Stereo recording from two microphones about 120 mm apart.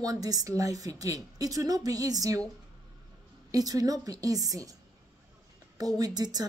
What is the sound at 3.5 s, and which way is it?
A woman's voice, 30° right (ahead or behind).